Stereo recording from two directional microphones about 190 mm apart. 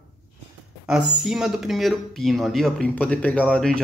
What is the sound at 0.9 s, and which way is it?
Speech, centre (ahead or behind).